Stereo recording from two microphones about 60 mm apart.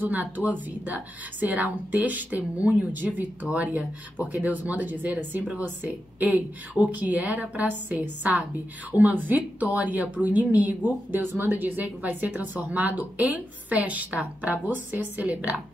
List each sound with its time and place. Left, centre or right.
0.0 s speech: right